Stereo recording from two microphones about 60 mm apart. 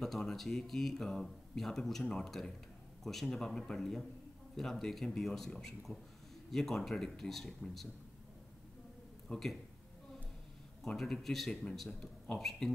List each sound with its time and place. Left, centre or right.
0.0 s a man's voice: centre
9.3 s speech: centre
10.8 s speech: centre